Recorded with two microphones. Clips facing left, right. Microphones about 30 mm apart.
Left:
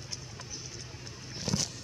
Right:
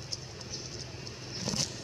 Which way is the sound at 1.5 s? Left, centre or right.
Left.